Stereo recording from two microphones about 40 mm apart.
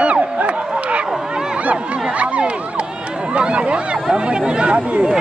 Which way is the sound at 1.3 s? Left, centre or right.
Right.